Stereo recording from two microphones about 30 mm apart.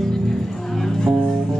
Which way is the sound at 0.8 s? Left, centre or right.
Centre.